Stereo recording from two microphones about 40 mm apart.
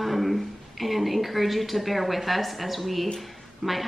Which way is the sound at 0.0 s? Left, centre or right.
Centre.